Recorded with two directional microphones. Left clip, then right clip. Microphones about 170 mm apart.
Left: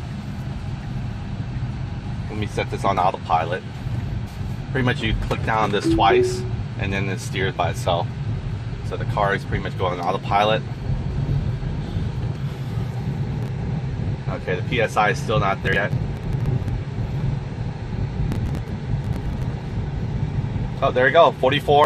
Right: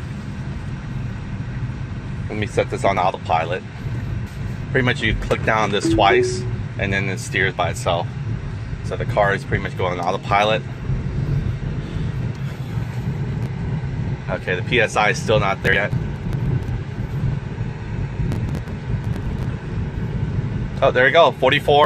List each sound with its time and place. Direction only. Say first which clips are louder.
2.4 s speech: right 4 dB; 40° right (ahead or behind)
4.7 s speech: right 4 dB; 45° right (ahead or behind)
9.1 s speech: right 3 dB; 50° right (ahead or behind)
14.4 s speech: right 3 dB; 45° right (ahead or behind)
20.8 s speech: right 2 dB; 45° right (ahead or behind)